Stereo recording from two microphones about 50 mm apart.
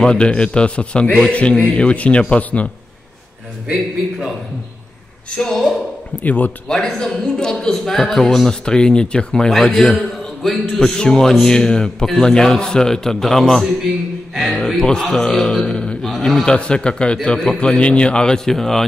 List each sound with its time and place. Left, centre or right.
0.0 s a man's voice: centre
5.5 s speech: centre
6.2 s a man's voice: left
6.7 s a man's voice: centre
14.8 s a man's voice: centre